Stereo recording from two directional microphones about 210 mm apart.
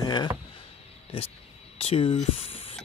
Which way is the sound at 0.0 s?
20° left (ahead or behind).